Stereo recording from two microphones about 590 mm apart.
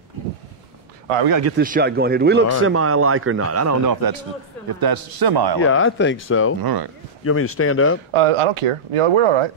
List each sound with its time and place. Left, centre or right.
1.4 s a man's voice: centre; by 5.6 s right
5.6 s speech: centre
6.6 s a man's voice: right
7.2 s speech: left
8.1 s speech: right